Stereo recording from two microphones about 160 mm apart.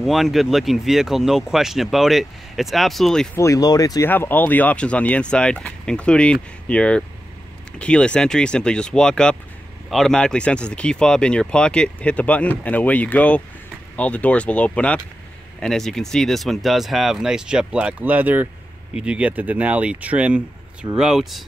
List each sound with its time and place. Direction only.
0.0 s speech: centre (ahead or behind)
3.3 s speech: 20° left (ahead or behind)
4.1 s speech: 10° left (ahead or behind)